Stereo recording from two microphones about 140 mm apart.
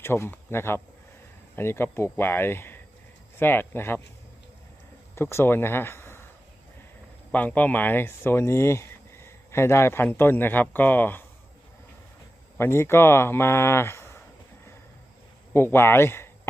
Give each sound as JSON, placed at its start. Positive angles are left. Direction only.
{"t": 0.0, "sound": "speech", "side_deg": 15}
{"t": 5.1, "sound": "speech", "side_deg": 15}
{"t": 7.3, "sound": "speech", "side_deg": 10}
{"t": 12.5, "sound": "speech", "side_deg": 15}
{"t": 15.5, "sound": "speech", "side_deg": 15}